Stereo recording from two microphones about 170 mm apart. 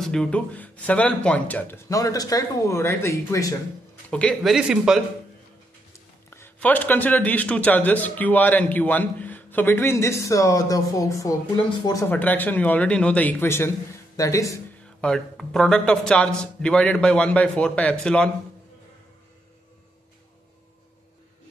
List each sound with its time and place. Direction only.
0.0 s speech: 5° left (ahead or behind)
4.1 s speech: 5° left (ahead or behind)
5.9 s speech: 15° left (ahead or behind)
15.0 s speech: 5° left (ahead or behind)